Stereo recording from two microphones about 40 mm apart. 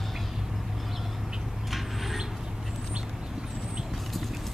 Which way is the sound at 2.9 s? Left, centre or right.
Centre.